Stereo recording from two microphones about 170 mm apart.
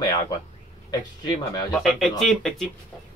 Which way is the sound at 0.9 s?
25° left (ahead or behind).